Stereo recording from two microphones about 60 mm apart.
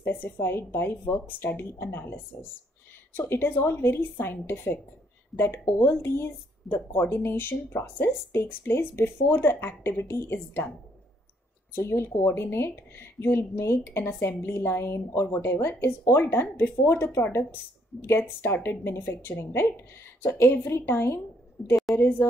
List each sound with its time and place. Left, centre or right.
0.0 s speech: left
3.2 s a woman's voice: left
10.0 s a woman's voice: left
11.7 s a woman's voice: left